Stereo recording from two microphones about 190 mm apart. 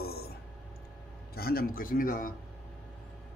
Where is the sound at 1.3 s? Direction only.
50° left (ahead or behind).